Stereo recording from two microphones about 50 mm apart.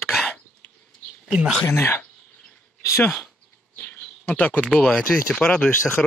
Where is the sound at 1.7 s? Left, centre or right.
Left.